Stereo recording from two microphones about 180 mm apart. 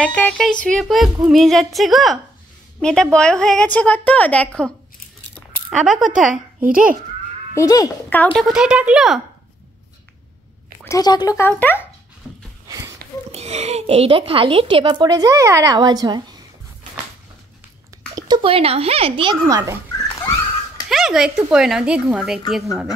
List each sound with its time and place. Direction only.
0.0 s a woman's voice: 5° left (ahead or behind)
5.7 s a woman's voice: centre (ahead or behind)
6.6 s a child's voice: 50° right (ahead or behind)
7.5 s speech: 20° left (ahead or behind)
8.2 s a woman's voice: 5° left (ahead or behind)
10.8 s speech: 20° left (ahead or behind)
12.2 s a sound: 5° left (ahead or behind)
12.6 s a sound: 15° right (ahead or behind)
13.3 s a woman's voice: 35° right (ahead or behind)
18.1 s a woman's voice: 25° right (ahead or behind)
20.9 s a woman's voice: centre (ahead or behind)